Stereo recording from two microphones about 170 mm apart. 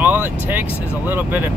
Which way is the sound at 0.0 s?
10° right (ahead or behind).